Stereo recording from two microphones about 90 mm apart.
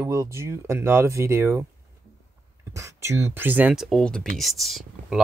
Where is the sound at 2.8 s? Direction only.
35° right (ahead or behind).